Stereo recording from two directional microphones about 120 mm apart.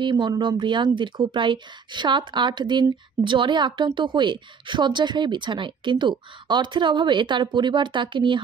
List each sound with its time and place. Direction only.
0.2 s a woman's voice: 40° right (ahead or behind)